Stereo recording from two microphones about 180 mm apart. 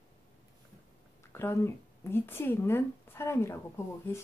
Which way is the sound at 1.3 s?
15° left (ahead or behind).